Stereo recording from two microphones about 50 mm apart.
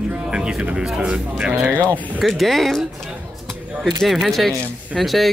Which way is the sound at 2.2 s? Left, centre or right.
Centre.